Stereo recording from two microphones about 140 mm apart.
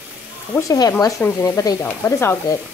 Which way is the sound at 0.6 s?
25° left (ahead or behind).